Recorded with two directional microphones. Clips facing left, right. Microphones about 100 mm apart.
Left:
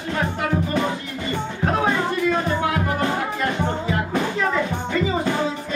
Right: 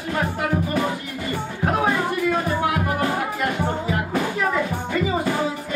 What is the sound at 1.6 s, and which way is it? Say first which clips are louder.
Music: even; 15° right (ahead or behind).